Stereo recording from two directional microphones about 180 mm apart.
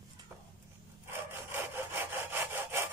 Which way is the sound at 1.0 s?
10° right (ahead or behind).